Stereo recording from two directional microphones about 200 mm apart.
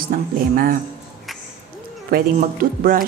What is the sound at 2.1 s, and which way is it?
Speech, 45° right (ahead or behind).